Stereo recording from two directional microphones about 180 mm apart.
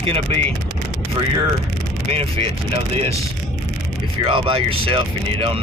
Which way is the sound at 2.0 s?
30° right (ahead or behind).